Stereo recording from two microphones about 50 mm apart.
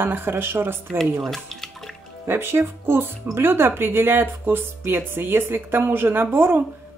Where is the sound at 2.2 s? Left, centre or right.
Right.